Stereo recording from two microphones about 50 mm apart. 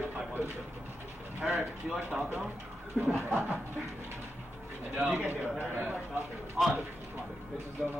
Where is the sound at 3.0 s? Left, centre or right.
Centre.